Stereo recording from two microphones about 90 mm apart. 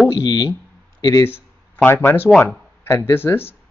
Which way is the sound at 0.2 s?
50° left (ahead or behind).